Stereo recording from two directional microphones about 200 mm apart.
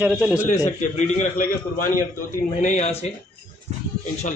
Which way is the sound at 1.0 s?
35° left (ahead or behind).